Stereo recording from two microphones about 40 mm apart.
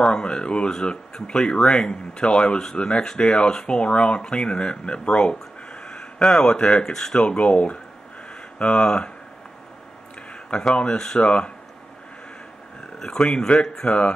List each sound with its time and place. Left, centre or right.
0.0 s speech: left
6.9 s speech: centre
7.2 s speech: left
10.5 s speech: left
13.0 s speech: centre